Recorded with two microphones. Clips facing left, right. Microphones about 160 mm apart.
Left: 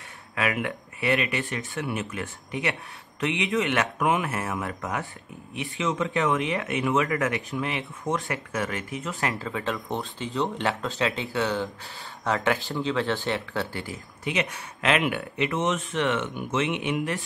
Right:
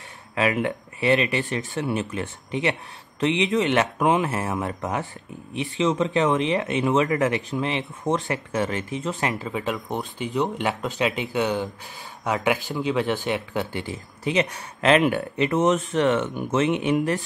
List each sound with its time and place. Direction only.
0.4 s speech: 30° right (ahead or behind)
14.2 s speech: 35° right (ahead or behind)